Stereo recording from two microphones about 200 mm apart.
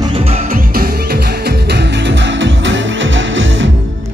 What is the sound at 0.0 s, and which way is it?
Music, 30° right (ahead or behind).